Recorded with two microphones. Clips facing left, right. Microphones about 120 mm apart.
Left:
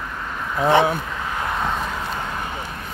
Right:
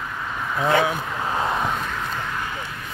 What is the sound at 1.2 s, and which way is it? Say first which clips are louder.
Vehicle: right 4 dB; 25° right (ahead or behind).